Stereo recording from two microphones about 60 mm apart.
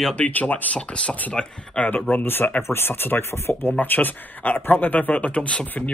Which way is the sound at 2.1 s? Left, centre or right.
Left.